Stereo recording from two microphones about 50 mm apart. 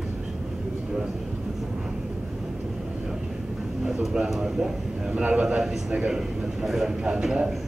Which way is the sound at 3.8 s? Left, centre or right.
Centre.